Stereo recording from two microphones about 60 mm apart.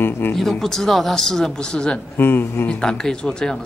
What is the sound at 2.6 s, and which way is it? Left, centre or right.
Speech, centre.